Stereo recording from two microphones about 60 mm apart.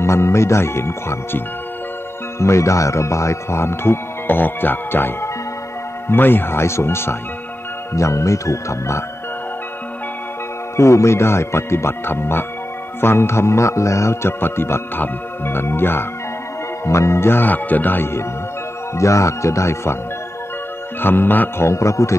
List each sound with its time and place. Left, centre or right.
0.0 s speech: left
7.9 s speech: left
10.8 s speech: left
14.4 s music: left
16.8 s music: left
18.9 s speech: left
21.0 s music: left
21.6 s speech: left